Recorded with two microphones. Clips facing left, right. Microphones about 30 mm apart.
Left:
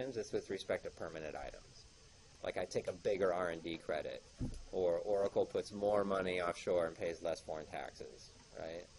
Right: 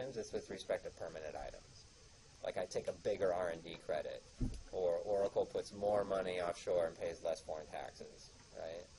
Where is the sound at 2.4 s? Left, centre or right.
Left.